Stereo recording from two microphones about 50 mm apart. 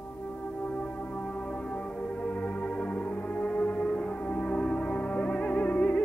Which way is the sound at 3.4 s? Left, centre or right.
Left.